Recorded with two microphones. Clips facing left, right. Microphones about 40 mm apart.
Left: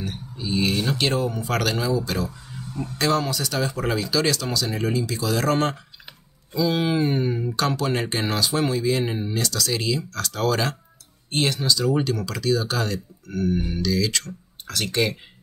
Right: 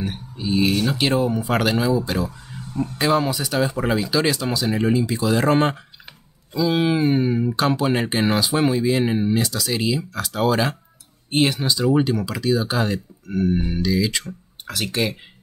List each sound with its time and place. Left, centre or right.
0.0 s speech: centre
6.5 s speech: centre